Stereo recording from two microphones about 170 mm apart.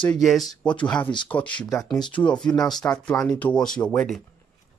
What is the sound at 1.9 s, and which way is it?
Speech, 30° left (ahead or behind).